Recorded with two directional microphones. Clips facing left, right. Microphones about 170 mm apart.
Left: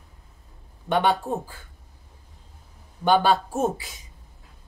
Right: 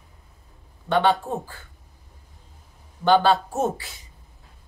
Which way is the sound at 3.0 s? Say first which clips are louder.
Right 2 dB; 15° left (ahead or behind).